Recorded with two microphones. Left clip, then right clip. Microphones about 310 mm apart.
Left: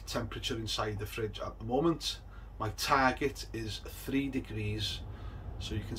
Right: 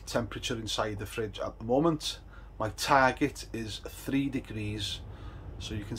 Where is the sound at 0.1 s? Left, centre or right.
Centre.